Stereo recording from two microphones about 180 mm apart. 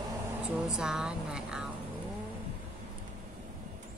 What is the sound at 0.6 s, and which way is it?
Speech, 5° right (ahead or behind).